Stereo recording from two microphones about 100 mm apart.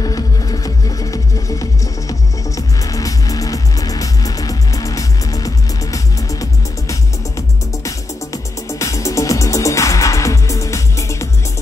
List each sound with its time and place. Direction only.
0.0 s music: 40° left (ahead or behind)